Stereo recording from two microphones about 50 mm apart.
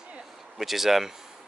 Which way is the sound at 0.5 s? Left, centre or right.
Centre.